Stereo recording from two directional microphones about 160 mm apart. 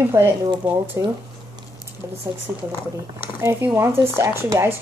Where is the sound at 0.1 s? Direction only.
15° right (ahead or behind).